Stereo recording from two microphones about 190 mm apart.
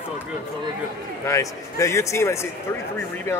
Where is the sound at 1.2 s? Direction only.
15° left (ahead or behind).